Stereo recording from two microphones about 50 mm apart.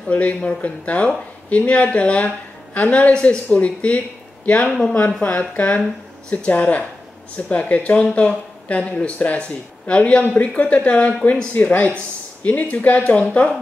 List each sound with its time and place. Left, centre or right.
0.1 s speech: left